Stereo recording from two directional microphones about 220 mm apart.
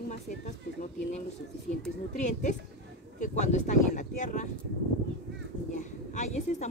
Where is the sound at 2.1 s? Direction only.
35° left (ahead or behind).